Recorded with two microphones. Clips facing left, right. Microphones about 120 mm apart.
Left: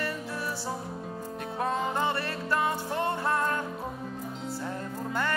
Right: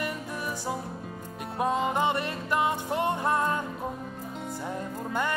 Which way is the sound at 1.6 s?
15° right (ahead or behind).